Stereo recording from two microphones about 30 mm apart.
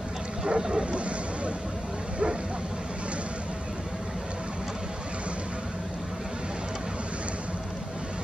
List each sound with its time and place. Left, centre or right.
0.5 s vehicle: right